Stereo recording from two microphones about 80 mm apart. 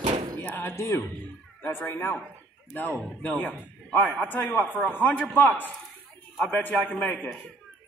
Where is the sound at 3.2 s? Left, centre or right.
Centre.